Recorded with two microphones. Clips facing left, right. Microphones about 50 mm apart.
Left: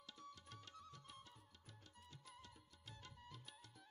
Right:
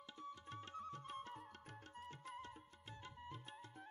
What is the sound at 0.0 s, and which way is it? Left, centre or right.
Music, right.